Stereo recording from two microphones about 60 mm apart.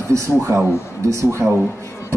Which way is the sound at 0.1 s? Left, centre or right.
Right.